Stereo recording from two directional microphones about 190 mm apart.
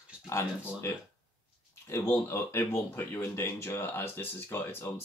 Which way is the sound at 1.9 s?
15° left (ahead or behind).